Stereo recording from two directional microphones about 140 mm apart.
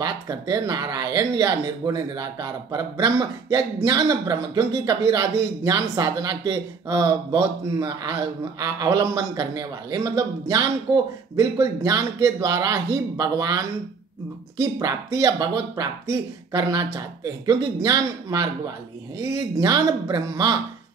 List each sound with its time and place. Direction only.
0.0 s speech: 25° right (ahead or behind)